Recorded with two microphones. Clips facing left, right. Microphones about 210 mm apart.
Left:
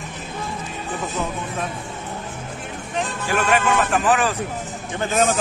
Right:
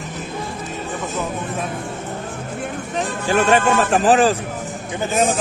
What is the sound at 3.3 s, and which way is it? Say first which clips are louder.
Speech: right 4 dB; 30° right (ahead or behind).